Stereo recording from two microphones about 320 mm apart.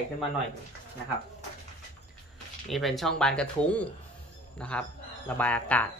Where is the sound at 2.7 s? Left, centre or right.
Centre.